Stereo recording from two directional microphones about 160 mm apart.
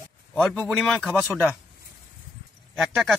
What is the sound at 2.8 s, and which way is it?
Speech, centre (ahead or behind).